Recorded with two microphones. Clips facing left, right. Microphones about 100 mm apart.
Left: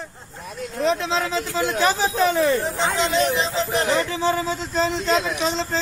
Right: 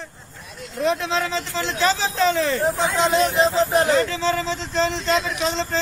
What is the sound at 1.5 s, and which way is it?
Speech, 15° left (ahead or behind).